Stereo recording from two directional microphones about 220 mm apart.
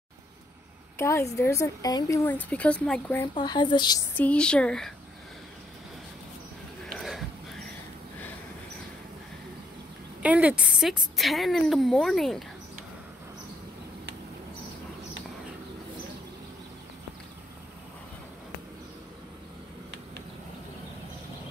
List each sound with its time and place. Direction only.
0.9 s a woman's voice: 10° left (ahead or behind)
3.3 s a woman's voice: 20° left (ahead or behind)
4.2 s a woman's voice: 5° left (ahead or behind)
6.9 s a sound: centre (ahead or behind)
10.2 s a woman's voice: 5° right (ahead or behind)